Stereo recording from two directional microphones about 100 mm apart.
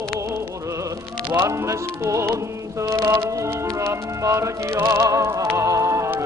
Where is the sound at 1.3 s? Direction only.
25° right (ahead or behind).